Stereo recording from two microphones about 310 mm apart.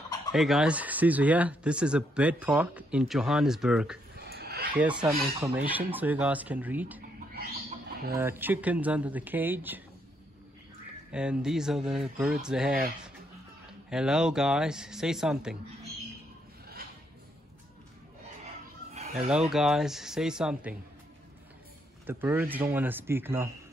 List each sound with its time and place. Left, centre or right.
0.3 s speech: centre
4.3 s a sound: right
4.7 s speech: centre
8.1 s speech: centre
11.1 s speech: centre
13.8 s speech: centre
19.1 s speech: centre
22.0 s speech: centre